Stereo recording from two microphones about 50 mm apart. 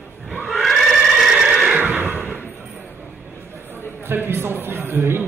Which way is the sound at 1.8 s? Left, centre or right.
Right.